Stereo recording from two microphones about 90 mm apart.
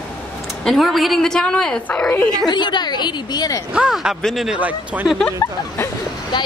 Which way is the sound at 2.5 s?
55° left (ahead or behind).